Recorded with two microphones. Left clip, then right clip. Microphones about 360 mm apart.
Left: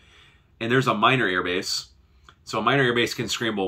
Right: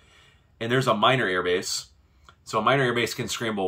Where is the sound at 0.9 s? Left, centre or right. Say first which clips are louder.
Left 1 dB; right.